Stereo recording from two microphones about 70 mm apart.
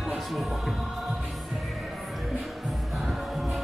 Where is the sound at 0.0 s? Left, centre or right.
Centre.